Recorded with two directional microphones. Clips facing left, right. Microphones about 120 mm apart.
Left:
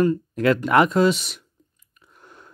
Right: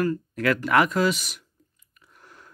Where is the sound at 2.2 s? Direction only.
25° left (ahead or behind).